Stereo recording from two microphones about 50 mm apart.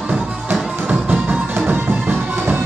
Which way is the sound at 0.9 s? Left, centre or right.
Right.